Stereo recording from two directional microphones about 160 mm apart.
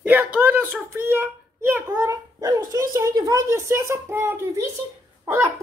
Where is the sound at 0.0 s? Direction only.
10° right (ahead or behind).